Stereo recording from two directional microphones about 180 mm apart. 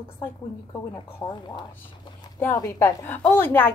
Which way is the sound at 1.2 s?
25° left (ahead or behind).